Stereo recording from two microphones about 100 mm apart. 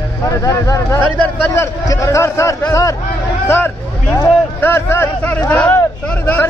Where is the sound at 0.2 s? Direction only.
30° left (ahead or behind).